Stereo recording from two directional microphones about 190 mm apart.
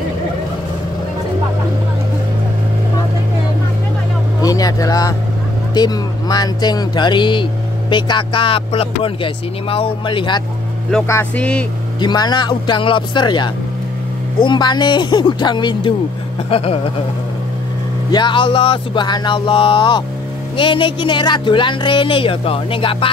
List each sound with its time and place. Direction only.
4.4 s vehicle: 20° left (ahead or behind)
5.8 s speech: 20° left (ahead or behind)
11.1 s speech: 10° left (ahead or behind)
12.0 s speech: 20° left (ahead or behind)
18.1 s speech: 25° left (ahead or behind)